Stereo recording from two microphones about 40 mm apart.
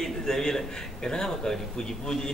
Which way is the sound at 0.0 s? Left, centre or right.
Centre.